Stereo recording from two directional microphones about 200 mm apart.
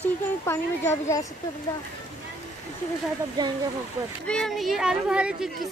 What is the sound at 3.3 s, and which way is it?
Speech, 20° right (ahead or behind).